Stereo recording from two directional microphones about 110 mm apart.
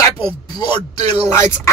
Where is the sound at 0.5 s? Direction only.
45° left (ahead or behind).